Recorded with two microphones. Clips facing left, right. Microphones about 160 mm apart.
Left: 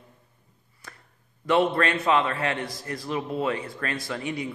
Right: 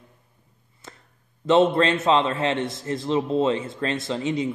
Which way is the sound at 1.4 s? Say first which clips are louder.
Right 4 dB; 25° right (ahead or behind).